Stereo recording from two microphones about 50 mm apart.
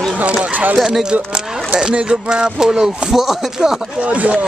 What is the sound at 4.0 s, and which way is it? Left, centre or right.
Speech, right.